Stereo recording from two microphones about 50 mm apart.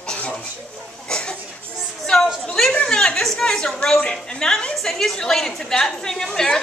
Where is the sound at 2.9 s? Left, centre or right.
Centre.